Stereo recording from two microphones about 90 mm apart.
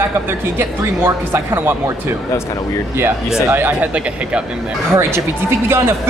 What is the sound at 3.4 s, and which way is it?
Speech, 25° right (ahead or behind).